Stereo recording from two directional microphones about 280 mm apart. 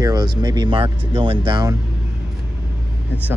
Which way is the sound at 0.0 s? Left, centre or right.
Centre.